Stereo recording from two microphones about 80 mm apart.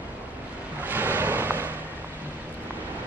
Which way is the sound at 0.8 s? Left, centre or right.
Right.